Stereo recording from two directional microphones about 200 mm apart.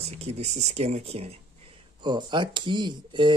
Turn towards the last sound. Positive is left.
turn(degrees=-25)  # may be behind; listen again after turning